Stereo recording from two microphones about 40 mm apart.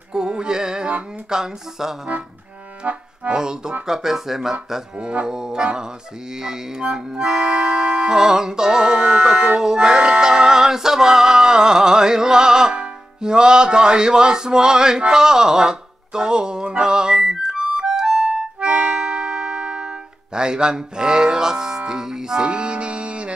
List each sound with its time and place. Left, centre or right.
0.1 s music: centre
2.8 s accordion: right
3.3 s music: centre
4.9 s music: right
16.8 s harmonica: centre
18.3 s music: right
20.3 s speech: right